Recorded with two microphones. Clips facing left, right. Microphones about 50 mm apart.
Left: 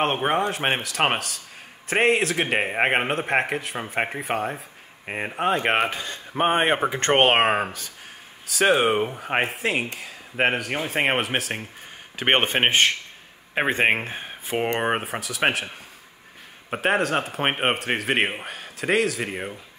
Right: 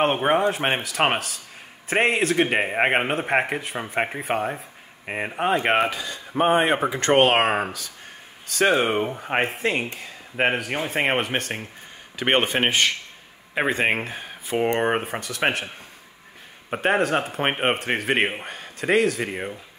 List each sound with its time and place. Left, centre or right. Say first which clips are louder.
0.0 s a man's voice: right 2 dB; centre
5.9 s a man's voice: right 1 dB; left
7.3 s speech: even; left
8.5 s a man's voice: left 1 dB; centre
12.2 s a man's voice: even; left
14.0 s speech: even; left
14.8 s a man's voice: right 2 dB; centre
16.7 s a man's voice: right 1 dB; centre